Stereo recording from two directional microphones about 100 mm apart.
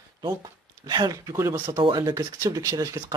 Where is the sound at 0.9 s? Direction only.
40° right (ahead or behind).